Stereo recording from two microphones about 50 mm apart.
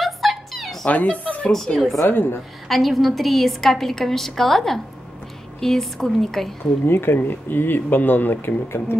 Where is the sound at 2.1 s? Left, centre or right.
Left.